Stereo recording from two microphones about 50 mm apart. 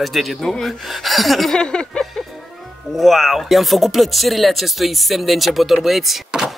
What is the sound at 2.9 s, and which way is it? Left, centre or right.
Speech, centre.